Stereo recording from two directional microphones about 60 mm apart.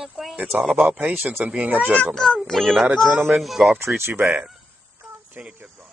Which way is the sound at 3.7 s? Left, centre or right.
Right.